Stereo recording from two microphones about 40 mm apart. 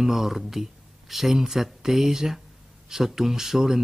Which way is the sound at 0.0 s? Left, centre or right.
Centre.